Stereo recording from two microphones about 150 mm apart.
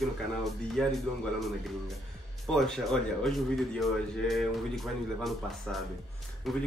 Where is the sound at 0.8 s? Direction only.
Centre (ahead or behind).